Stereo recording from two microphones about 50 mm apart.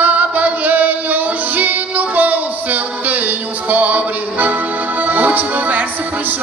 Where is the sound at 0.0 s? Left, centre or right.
Right.